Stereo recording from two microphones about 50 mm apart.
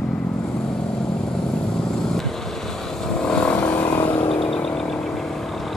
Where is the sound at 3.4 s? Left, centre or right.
Left.